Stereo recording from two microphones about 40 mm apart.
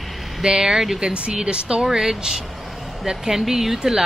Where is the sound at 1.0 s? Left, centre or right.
Right.